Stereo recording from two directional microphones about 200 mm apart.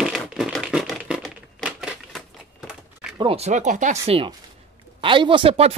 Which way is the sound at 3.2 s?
30° right (ahead or behind).